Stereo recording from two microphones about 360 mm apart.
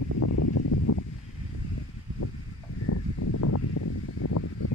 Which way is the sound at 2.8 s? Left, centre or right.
Left.